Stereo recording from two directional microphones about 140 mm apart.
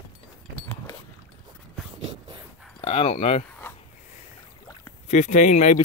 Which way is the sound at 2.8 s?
40° left (ahead or behind).